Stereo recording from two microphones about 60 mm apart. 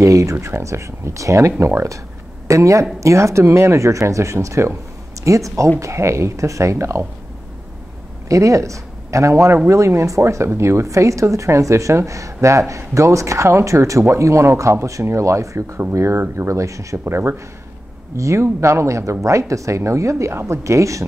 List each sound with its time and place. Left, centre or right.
0.0 s speech: right
8.3 s speech: right
17.0 s speech: right
18.1 s speech: right